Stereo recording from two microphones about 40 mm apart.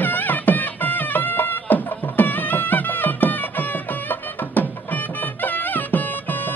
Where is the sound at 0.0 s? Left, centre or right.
Left.